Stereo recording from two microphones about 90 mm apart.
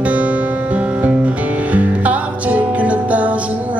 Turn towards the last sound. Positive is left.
turn(degrees=-15)  # may be behind; listen again after turning